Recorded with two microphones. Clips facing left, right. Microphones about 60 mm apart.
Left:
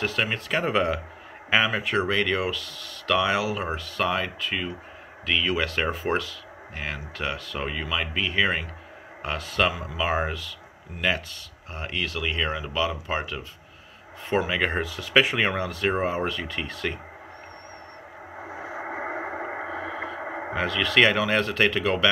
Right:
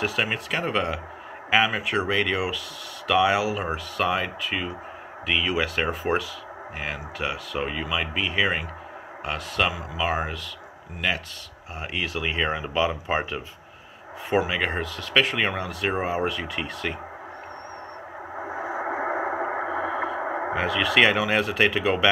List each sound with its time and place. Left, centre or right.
0.0 s speech: centre
0.6 s speech: centre
11.8 s speech: centre
14.3 s speech: centre
15.0 s speech: centre
18.5 s radio: centre
20.5 s speech: centre